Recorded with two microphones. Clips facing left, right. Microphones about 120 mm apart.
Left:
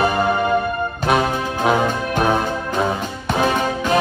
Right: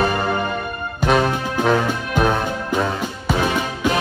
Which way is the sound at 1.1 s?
10° left (ahead or behind).